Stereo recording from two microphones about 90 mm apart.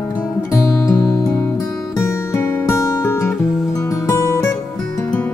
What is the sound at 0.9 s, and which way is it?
Music, 35° left (ahead or behind).